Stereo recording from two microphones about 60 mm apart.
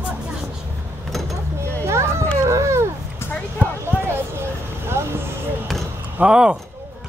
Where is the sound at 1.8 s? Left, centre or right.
Right.